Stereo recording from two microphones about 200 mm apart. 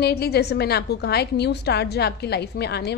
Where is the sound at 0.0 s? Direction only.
55° left (ahead or behind).